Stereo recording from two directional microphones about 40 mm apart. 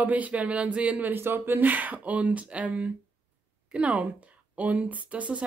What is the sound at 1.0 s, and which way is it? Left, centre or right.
Speech, right.